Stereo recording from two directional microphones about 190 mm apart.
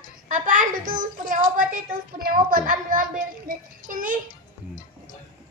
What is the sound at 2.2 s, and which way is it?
A child's voice, 50° right (ahead or behind).